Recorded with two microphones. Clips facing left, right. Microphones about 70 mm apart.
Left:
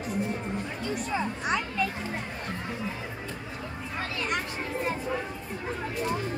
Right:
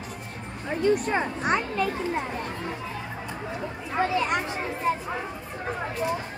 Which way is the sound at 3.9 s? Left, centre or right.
Right.